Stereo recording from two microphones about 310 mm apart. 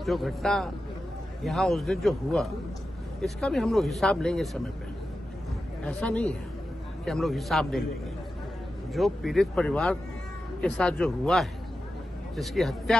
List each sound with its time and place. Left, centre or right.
0.0 s speech: centre
5.9 s speech: centre
8.9 s speech: centre